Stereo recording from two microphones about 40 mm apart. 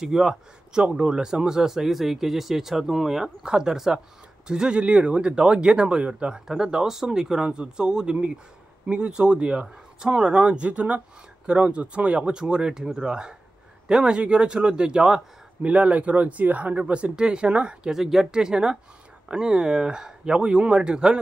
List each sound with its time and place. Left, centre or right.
0.0 s speech: centre; by 6.3 s right
6.3 s speech: centre
15.6 s speech: right
17.8 s speech: centre
18.3 s speech: centre